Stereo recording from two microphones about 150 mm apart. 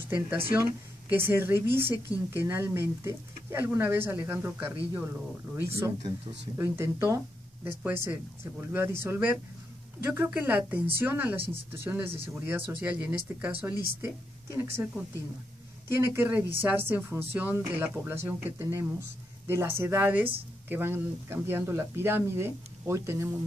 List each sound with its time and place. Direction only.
0.1 s speech: 10° right (ahead or behind)